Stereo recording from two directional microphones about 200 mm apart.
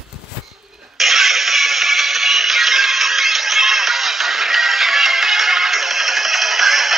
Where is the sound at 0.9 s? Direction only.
Centre (ahead or behind).